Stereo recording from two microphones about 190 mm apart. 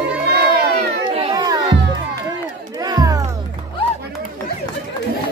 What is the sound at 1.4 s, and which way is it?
Music, 20° right (ahead or behind).